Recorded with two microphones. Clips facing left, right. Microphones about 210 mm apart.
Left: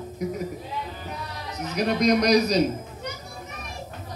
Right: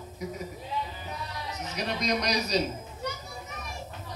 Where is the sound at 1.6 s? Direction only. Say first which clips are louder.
Left 10 dB; 55° left (ahead or behind).